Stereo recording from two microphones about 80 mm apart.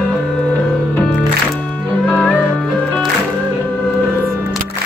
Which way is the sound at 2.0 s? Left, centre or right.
Centre.